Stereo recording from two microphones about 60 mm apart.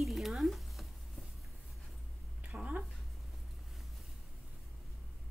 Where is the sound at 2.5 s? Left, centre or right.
Centre.